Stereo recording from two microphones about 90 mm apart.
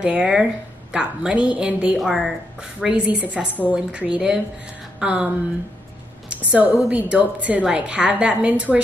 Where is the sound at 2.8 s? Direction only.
15° right (ahead or behind).